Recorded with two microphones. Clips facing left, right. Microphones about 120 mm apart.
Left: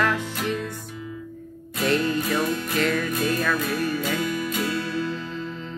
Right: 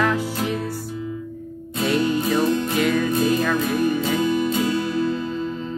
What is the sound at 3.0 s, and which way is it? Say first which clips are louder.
Music: right 5 dB; 25° right (ahead or behind).